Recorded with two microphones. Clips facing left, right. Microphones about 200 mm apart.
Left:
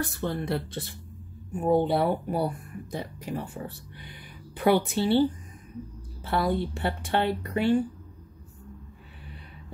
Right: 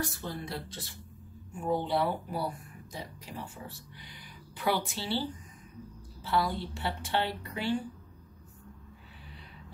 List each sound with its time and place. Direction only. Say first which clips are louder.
0.2 s speech: left 9 dB; 60° left (ahead or behind)
6.2 s speech: left 4 dB; 55° left (ahead or behind)